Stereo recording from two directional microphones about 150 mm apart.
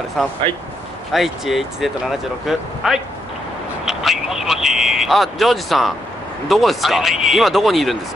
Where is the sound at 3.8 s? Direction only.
Centre (ahead or behind).